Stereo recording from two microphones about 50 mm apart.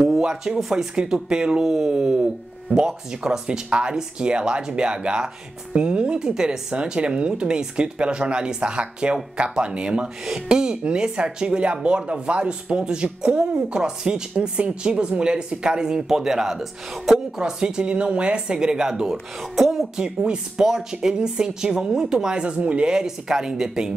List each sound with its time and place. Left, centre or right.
0.2 s speech: centre
16.9 s speech: centre
17.4 s speech: centre
19.5 s speech: centre
20.0 s speech: centre